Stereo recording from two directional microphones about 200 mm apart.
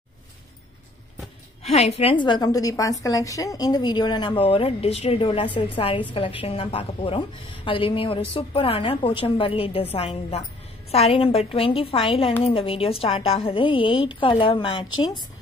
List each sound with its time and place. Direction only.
1.6 s a woman's voice: 30° left (ahead or behind)